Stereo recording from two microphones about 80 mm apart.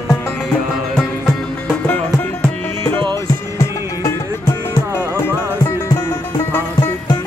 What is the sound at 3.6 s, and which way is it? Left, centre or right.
Music, left.